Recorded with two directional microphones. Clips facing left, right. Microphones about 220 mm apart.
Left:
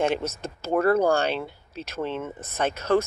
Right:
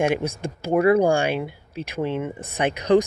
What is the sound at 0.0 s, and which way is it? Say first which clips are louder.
Speech: right 3 dB; 10° right (ahead or behind).